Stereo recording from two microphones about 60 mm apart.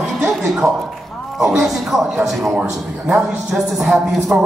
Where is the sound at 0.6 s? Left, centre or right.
Right.